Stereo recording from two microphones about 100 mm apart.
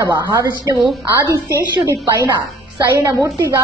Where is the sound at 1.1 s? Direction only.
35° right (ahead or behind).